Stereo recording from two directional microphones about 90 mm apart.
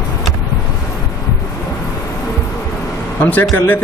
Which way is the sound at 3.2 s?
20° left (ahead or behind).